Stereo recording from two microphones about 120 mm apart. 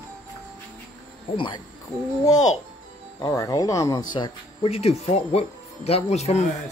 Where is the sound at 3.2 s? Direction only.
30° left (ahead or behind).